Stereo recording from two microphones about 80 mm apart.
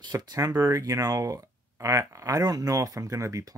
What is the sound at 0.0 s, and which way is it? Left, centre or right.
Speech, right.